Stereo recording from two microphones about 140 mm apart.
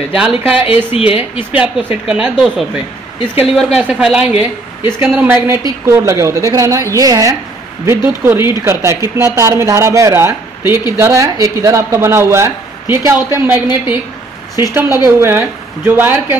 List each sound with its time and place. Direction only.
0.1 s a woman's voice: 5° right (ahead or behind)
0.9 s speech: 45° left (ahead or behind)
1.5 s a woman's voice: 10° right (ahead or behind)